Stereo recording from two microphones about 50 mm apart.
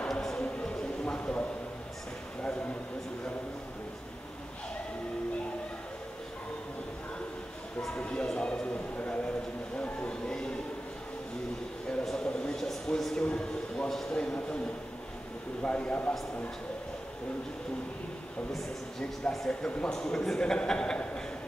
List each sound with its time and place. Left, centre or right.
0.1 s music: centre
0.4 s music: left
7.9 s speech: left
8.9 s a sound: left
12.0 s a sound: centre
13.2 s a man's voice: centre
13.8 s a man's voice: centre
14.1 s speech: left
15.6 s speech: left
19.3 s a man's voice: centre